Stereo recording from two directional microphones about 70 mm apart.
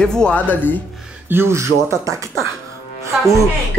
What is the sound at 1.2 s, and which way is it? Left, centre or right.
Speech, right.